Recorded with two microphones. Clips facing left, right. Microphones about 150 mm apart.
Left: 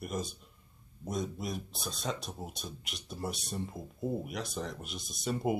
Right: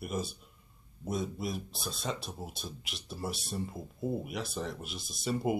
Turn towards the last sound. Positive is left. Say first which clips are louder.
# right 1 dB
turn(degrees=0)  # may be behind; listen again after turning